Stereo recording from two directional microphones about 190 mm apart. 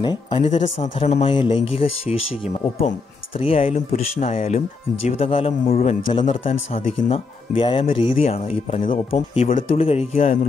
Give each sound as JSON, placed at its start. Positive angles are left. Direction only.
{"t": 0.0, "sound": "speech", "side_deg": 25}